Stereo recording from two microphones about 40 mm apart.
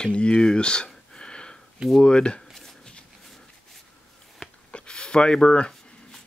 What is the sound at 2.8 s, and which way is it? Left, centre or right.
Shuffle, left.